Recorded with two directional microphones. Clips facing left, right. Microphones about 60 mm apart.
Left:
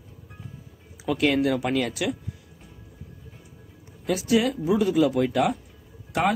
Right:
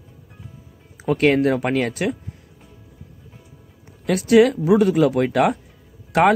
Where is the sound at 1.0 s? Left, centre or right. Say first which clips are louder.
Right 5 dB; right.